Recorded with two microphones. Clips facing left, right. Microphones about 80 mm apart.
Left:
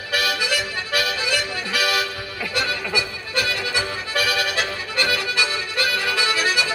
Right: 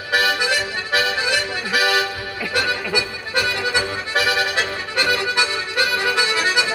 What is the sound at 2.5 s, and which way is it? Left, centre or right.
Accordion, right.